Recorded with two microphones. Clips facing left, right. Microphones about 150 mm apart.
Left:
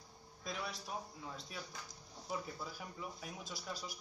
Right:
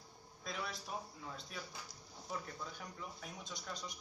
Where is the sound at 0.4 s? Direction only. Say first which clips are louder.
Even; centre (ahead or behind).